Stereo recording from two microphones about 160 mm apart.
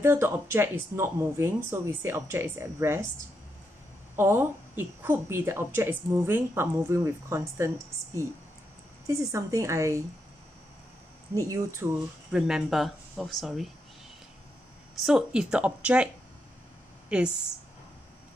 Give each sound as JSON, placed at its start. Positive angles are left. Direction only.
{"t": 0.0, "sound": "speech", "side_deg": -15}
{"t": 4.2, "sound": "a woman's voice", "side_deg": -15}
{"t": 11.3, "sound": "a woman's voice", "side_deg": -20}
{"t": 12.3, "sound": "speech", "side_deg": -5}
{"t": 15.0, "sound": "speech", "side_deg": -5}
{"t": 17.1, "sound": "speech", "side_deg": -5}